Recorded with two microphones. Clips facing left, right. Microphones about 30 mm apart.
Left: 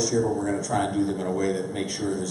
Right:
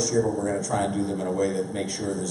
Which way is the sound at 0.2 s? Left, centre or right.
Centre.